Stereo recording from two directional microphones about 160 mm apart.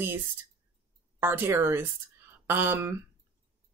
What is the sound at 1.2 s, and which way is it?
Speech, 15° right (ahead or behind).